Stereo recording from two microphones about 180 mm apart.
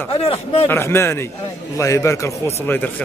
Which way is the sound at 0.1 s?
30° left (ahead or behind).